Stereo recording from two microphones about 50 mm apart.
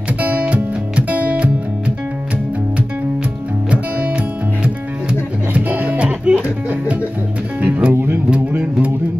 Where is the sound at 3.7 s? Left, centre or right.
Right.